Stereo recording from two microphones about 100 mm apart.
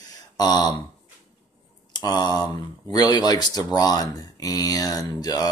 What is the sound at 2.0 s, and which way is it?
Speech, 40° left (ahead or behind).